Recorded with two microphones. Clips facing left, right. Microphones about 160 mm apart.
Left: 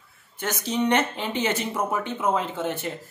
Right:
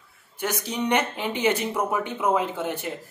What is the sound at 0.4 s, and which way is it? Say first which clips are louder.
Speech: left 2 dB; 10° right (ahead or behind).